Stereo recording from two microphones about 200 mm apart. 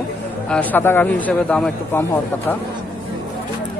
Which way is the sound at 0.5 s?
10° left (ahead or behind).